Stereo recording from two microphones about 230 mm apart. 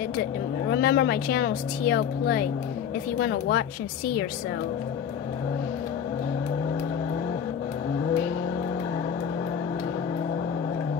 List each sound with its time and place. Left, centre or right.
0.7 s speech: left